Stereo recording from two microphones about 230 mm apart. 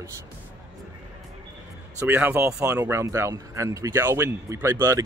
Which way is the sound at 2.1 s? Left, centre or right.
Centre.